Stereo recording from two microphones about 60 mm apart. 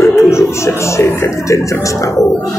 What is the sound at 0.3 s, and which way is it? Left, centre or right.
Speech, left.